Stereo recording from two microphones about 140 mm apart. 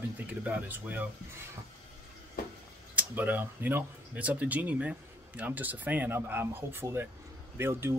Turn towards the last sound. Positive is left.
turn(degrees=-15)  # may be behind; listen again after turning